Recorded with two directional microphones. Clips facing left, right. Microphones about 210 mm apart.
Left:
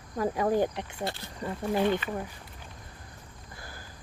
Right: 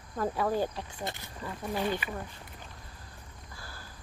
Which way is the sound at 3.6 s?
15° left (ahead or behind).